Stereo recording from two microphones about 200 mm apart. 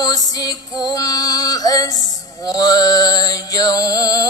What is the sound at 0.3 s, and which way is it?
Music, 20° left (ahead or behind).